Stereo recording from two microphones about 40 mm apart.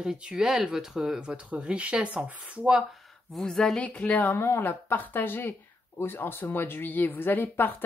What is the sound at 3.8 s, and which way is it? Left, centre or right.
Speech, left.